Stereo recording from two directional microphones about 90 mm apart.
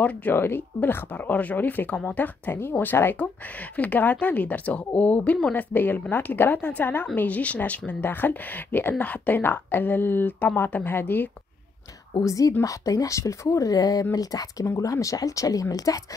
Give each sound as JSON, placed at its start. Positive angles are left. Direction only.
{"t": 0.0, "sound": "speech", "side_deg": 20}
{"t": 12.1, "sound": "speech", "side_deg": 40}